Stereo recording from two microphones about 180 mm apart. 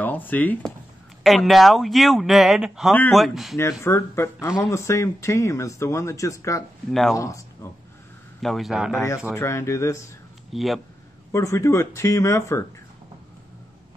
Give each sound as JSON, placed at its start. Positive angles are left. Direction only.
{"t": 0.0, "sound": "speech", "side_deg": 10}
{"t": 3.8, "sound": "speech", "side_deg": 15}
{"t": 6.9, "sound": "speech", "side_deg": 0}
{"t": 7.2, "sound": "speech", "side_deg": 15}
{"t": 8.4, "sound": "speech", "side_deg": 0}
{"t": 9.3, "sound": "speech", "side_deg": 15}
{"t": 10.5, "sound": "speech", "side_deg": 0}
{"t": 11.3, "sound": "speech", "side_deg": 15}